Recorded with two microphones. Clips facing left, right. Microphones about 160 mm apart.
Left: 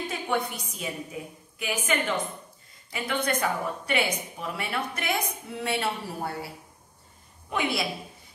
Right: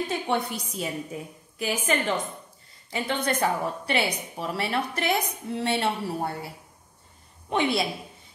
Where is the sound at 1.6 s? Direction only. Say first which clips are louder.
Right 2 dB; 35° right (ahead or behind).